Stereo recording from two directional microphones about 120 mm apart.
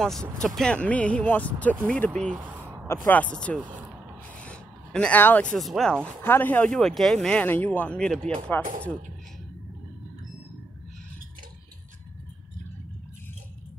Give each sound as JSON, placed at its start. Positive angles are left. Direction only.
{"t": 0.0, "sound": "speech", "side_deg": 5}
{"t": 2.3, "sound": "a sound", "side_deg": -15}
{"t": 3.1, "sound": "speech", "side_deg": 10}
{"t": 4.4, "sound": "a sound", "side_deg": 10}
{"t": 5.7, "sound": "speech", "side_deg": 5}
{"t": 6.2, "sound": "speech", "side_deg": 15}